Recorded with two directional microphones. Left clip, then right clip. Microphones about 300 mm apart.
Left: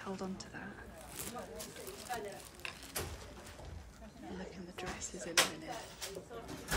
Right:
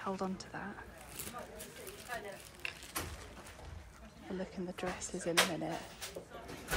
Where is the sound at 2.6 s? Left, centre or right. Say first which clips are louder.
Right 3 dB; left.